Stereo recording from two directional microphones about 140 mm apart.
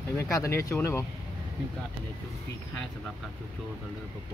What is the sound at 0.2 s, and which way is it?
Speech, 20° left (ahead or behind).